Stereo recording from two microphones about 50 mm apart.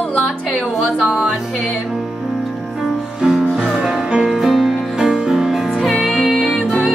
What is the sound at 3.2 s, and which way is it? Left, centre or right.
Music, centre.